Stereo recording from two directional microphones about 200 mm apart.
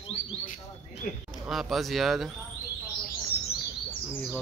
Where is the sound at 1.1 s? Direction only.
40° left (ahead or behind).